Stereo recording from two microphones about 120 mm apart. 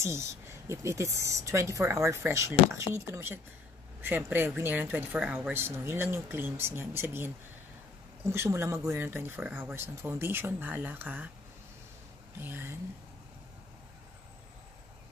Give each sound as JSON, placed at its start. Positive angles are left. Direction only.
{"t": 0.0, "sound": "speech", "side_deg": -25}
{"t": 12.4, "sound": "speech", "side_deg": -15}